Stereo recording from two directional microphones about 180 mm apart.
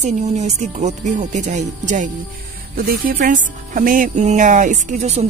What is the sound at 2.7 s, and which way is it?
Speech, 55° right (ahead or behind).